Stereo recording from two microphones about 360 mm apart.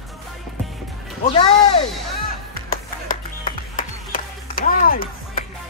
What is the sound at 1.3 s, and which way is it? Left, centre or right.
Music, centre.